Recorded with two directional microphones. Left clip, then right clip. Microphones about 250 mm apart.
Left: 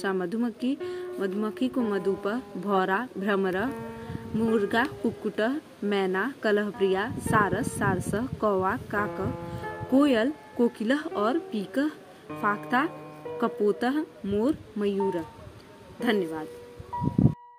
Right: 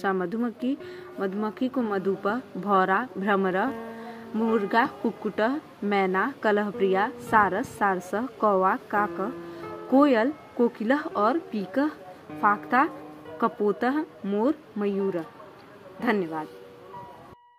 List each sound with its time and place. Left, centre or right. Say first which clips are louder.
0.0 s a woman's voice: right 2 dB; centre